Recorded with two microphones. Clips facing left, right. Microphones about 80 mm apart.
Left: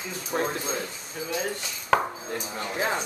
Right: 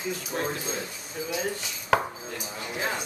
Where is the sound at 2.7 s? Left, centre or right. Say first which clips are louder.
Left 3 dB; left.